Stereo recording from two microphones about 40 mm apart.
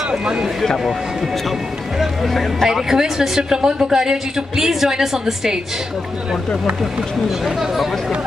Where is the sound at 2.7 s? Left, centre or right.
Centre.